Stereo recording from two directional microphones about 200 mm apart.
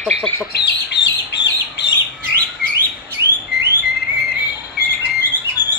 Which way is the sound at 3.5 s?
55° left (ahead or behind).